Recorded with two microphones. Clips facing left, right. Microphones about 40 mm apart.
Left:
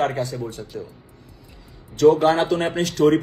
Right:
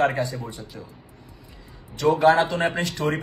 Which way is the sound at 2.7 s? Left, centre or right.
Right.